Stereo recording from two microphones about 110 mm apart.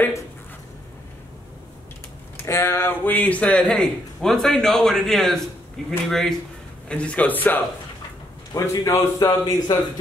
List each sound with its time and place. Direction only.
2.4 s a man's voice: 25° left (ahead or behind)
8.5 s a man's voice: 25° left (ahead or behind)
9.4 s speech: 35° left (ahead or behind)